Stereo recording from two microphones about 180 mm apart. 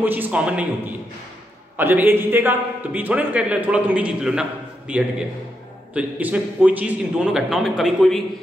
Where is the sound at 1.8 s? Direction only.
10° right (ahead or behind).